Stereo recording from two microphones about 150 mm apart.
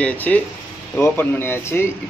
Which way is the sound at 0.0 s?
10° left (ahead or behind).